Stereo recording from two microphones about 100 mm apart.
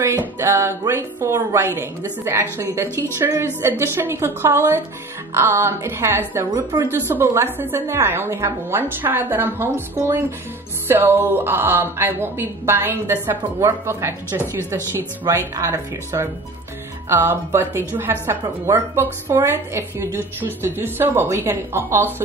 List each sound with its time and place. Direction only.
0.4 s a woman's voice: 25° right (ahead or behind)